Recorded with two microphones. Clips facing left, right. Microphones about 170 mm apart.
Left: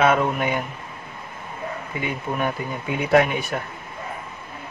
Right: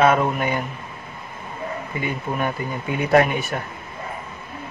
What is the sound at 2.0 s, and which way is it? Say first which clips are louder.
A man's voice: even; centre (ahead or behind).